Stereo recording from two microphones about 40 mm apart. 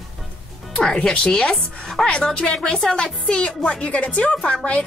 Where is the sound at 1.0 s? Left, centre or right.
Left.